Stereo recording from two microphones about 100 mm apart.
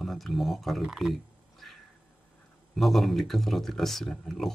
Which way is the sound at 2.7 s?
Centre (ahead or behind).